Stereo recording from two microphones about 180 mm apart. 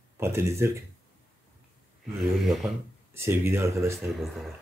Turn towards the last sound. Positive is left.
turn(degrees=-15)  # may be behind; listen again after turning